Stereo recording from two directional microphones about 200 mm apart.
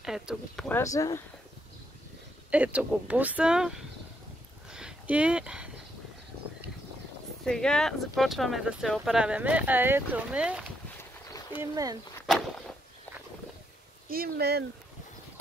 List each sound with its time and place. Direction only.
0.0 s speech: centre (ahead or behind)
0.7 s speech: 15° left (ahead or behind)
2.5 s speech: 5° right (ahead or behind)
4.6 s a sound: 5° right (ahead or behind)
7.4 s speech: 5° left (ahead or behind)
11.6 s speech: 20° right (ahead or behind)
12.2 s whip: 5° left (ahead or behind)
14.0 s speech: 45° right (ahead or behind)